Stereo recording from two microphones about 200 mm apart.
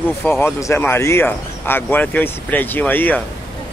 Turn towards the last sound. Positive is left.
turn(degrees=10)  # may be behind; listen again after turning